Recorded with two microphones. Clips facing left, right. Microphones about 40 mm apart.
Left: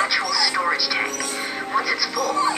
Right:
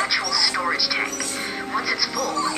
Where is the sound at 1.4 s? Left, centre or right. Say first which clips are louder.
Left 3 dB; centre.